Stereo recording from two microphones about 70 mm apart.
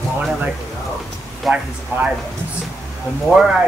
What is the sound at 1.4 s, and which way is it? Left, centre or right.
Speech, centre.